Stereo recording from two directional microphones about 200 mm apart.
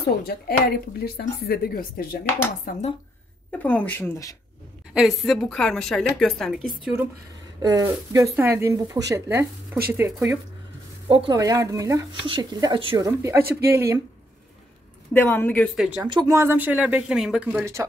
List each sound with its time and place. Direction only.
0.0 s a woman's voice: 50° left (ahead or behind)
3.5 s speech: 10° left (ahead or behind)
4.9 s a woman's voice: centre (ahead or behind)
7.6 s speech: 15° right (ahead or behind)
11.1 s speech: 25° right (ahead or behind)
13.4 s speech: 50° right (ahead or behind)
13.7 s speech: 15° right (ahead or behind)
15.1 s speech: 10° left (ahead or behind)
16.0 s speech: 20° right (ahead or behind)